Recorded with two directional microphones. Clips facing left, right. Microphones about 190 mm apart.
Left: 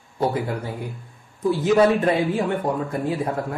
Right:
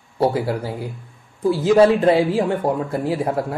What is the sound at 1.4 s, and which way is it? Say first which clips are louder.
Speech: right 3 dB; 30° right (ahead or behind).